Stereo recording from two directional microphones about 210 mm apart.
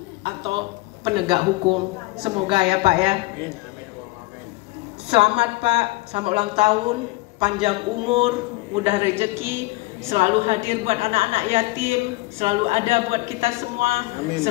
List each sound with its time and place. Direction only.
0.2 s a woman's voice: 25° right (ahead or behind)
5.1 s a woman's voice: 30° right (ahead or behind)
9.3 s a woman's voice: 10° right (ahead or behind)
10.0 s a woman's voice: 30° right (ahead or behind)